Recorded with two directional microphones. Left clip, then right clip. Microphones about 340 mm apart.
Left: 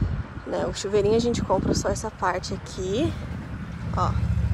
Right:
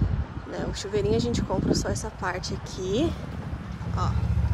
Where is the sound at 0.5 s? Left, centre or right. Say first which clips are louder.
Left 5 dB; centre.